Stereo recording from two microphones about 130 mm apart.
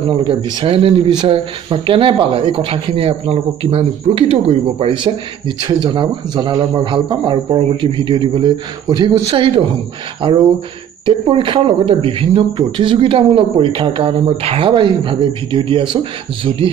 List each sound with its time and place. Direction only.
0.1 s speech: 40° right (ahead or behind)